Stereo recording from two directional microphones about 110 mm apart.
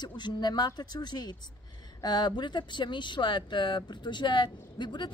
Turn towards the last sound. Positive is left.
turn(degrees=45)  # may be behind; listen again after turning